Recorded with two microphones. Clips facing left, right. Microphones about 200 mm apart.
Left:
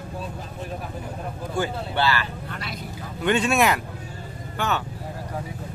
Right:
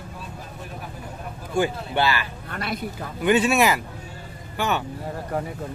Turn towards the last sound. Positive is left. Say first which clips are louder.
# right 1 dB
turn(degrees=-10)  # may be behind; listen again after turning